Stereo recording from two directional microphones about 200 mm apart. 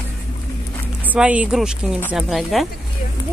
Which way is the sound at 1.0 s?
5° right (ahead or behind).